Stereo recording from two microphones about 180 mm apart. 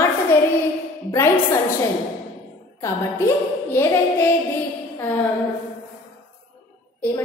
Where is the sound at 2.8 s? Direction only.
15° left (ahead or behind).